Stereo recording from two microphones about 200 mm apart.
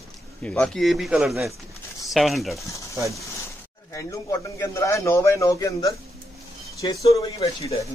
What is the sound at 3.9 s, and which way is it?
A man's voice, 15° left (ahead or behind).